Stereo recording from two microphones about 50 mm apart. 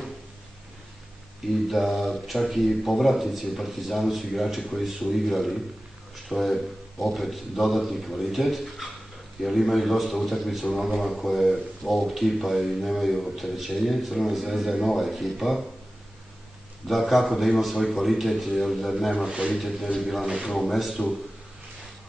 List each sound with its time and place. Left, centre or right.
1.7 s speech: centre
16.8 s speech: centre
19.2 s a man's voice: centre
19.5 s speech: centre